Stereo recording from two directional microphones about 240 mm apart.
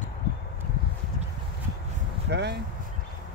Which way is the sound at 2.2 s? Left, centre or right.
Right.